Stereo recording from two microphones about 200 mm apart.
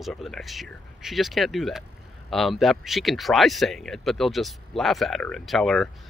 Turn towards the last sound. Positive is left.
turn(degrees=0)  # may be behind; listen again after turning